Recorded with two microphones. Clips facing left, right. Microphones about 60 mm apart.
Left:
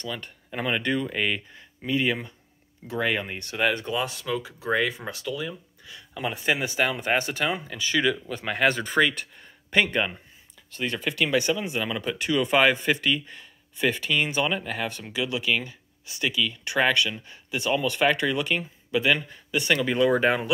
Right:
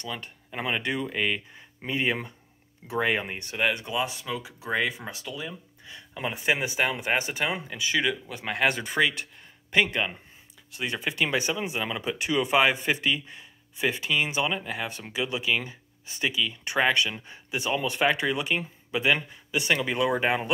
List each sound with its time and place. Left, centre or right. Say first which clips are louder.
0.0 s speech: left 2 dB; centre
1.9 s speech: left 2 dB; right
3.5 s speech: left 2 dB; centre
10.7 s speech: left 2 dB; centre